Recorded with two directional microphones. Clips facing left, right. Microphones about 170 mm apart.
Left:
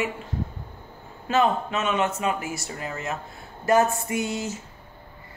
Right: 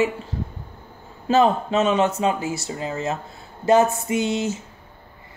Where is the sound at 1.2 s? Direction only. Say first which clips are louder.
Right 4 dB; 35° right (ahead or behind).